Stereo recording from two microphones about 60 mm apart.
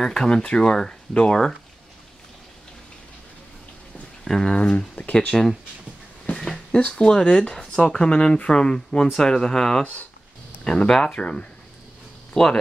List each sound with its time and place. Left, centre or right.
0.0 s speech: centre
4.2 s speech: centre
4.6 s speech: left
5.3 s speech: centre
6.3 s a sound: centre
6.8 s speech: centre